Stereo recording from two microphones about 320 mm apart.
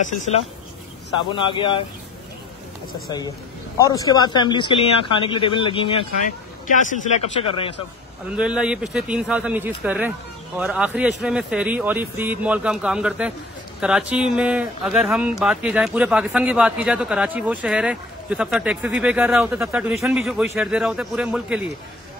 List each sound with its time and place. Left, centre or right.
1.3 s a man's voice: centre
3.7 s a man's voice: centre
8.4 s speech: centre